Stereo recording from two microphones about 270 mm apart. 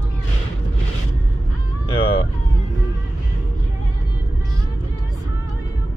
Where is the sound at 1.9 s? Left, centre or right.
Left.